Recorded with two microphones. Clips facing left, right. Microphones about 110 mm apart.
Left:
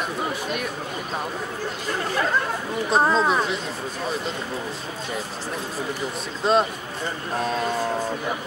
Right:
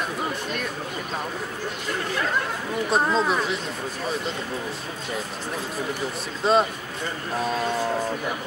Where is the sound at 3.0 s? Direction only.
40° left (ahead or behind).